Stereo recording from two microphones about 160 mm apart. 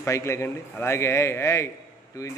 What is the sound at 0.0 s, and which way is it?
A man's voice, 15° left (ahead or behind).